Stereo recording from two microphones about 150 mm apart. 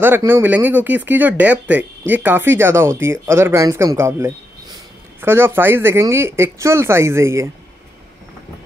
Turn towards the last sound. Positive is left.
turn(degrees=-20)  # may be behind; listen again after turning